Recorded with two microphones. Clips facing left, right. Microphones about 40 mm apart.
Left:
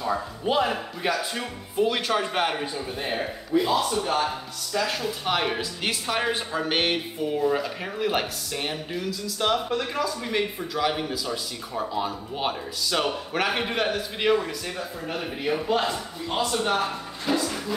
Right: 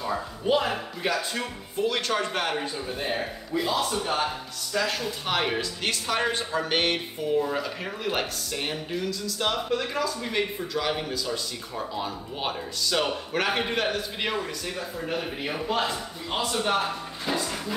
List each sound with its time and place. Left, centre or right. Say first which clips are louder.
0.0 s speech: left 2 dB; centre
3.7 s speech: left 3 dB; centre